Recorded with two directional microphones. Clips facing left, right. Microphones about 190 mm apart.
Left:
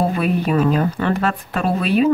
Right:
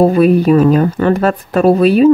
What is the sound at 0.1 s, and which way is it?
Speech, 40° right (ahead or behind).